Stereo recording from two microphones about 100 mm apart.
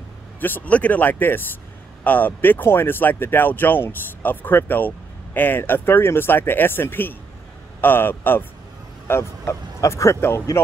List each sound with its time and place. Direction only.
0.4 s speech: 20° left (ahead or behind)